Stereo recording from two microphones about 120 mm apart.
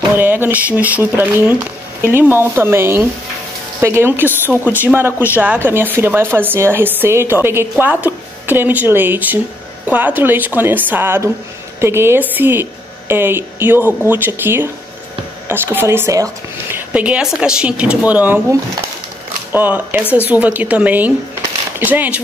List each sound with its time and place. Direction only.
0.1 s speech: 15° right (ahead or behind)
16.7 s speech: 10° right (ahead or behind)
19.5 s speech: 15° right (ahead or behind)